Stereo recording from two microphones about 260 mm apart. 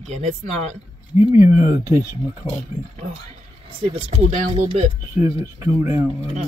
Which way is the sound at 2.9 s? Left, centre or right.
Right.